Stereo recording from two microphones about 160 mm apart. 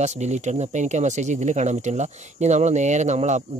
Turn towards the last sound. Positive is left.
turn(degrees=-45)  # may be behind; listen again after turning